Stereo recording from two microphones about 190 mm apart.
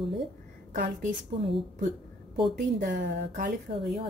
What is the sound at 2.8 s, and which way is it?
Speech, 45° right (ahead or behind).